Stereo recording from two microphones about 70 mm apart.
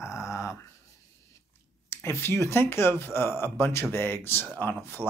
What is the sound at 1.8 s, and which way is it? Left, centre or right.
Speech, left.